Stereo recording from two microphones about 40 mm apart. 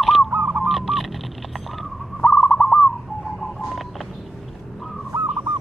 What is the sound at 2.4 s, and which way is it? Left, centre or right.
Bird, left.